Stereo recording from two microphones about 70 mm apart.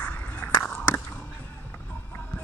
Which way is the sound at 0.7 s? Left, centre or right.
Left.